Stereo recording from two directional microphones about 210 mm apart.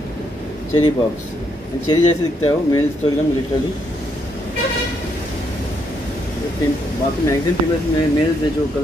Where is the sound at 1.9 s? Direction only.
15° left (ahead or behind).